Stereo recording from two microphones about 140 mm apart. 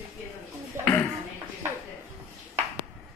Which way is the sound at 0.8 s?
15° left (ahead or behind).